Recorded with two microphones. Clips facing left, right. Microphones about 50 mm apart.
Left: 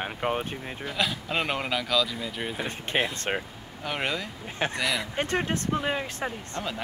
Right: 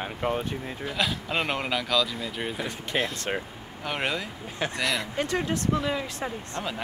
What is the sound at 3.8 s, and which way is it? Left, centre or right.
Speech, centre.